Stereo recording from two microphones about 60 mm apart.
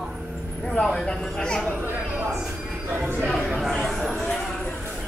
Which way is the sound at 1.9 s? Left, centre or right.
Right.